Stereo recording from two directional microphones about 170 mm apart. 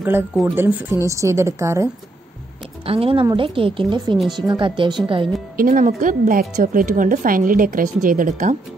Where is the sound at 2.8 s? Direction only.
35° right (ahead or behind).